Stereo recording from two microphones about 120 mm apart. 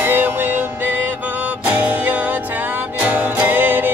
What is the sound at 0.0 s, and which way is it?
Music, 20° right (ahead or behind).